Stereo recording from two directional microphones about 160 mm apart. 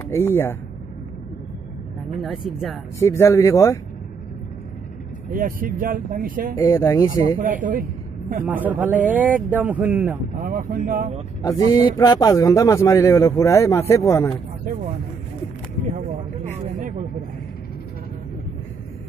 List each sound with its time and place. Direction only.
0.1 s speech: 15° left (ahead or behind)
2.2 s speech: centre (ahead or behind)
3.0 s speech: 15° left (ahead or behind)
5.3 s speech: 60° right (ahead or behind)
6.5 s speech: 20° left (ahead or behind)
7.3 s speech: 55° right (ahead or behind)
8.5 s speech: 10° right (ahead or behind)
10.3 s speech: 60° right (ahead or behind)
11.4 s speech: 20° left (ahead or behind)